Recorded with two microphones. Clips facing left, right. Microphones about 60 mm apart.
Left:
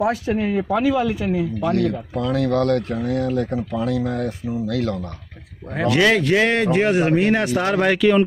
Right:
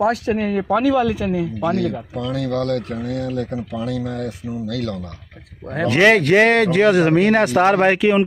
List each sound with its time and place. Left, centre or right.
0.0 s speech: right
1.8 s speech: left
5.9 s speech: right